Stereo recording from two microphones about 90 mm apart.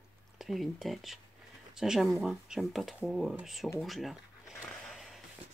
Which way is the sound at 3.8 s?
Centre (ahead or behind).